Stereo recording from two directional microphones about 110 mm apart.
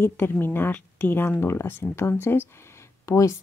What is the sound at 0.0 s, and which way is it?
Speech, 20° left (ahead or behind).